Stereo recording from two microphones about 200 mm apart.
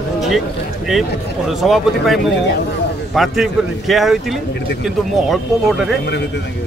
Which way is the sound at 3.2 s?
Centre (ahead or behind).